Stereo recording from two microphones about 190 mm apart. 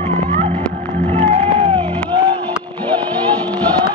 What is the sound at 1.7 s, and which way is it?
Music, 25° right (ahead or behind).